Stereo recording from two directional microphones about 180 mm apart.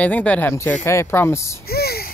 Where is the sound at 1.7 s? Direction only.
60° left (ahead or behind).